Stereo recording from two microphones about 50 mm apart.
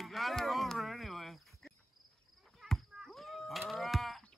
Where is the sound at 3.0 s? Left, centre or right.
Centre.